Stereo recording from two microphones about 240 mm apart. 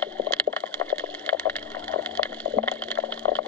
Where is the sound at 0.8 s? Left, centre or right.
Centre.